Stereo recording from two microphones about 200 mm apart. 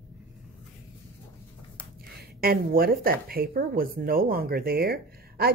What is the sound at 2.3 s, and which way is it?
Speech, 50° right (ahead or behind).